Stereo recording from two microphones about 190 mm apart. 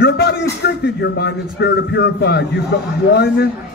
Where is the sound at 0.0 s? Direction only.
60° left (ahead or behind).